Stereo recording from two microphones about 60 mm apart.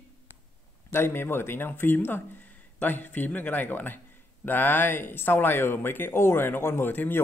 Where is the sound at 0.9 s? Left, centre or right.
Left.